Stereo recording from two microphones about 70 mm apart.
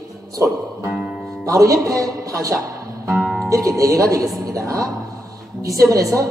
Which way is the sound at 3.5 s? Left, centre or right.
Right.